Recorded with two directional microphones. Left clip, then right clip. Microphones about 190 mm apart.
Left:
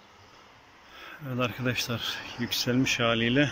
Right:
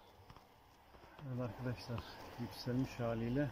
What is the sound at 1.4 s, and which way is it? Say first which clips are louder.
Speech: left 17 dB; 15° left (ahead or behind).